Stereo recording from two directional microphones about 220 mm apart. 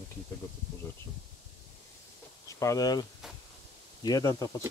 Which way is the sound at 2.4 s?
15° left (ahead or behind).